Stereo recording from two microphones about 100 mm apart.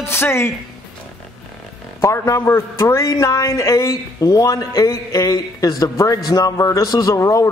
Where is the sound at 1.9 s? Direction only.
30° left (ahead or behind).